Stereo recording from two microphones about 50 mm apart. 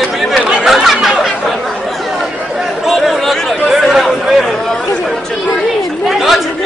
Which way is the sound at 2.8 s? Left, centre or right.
Centre.